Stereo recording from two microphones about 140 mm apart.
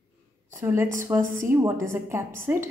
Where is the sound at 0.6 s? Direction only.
15° right (ahead or behind).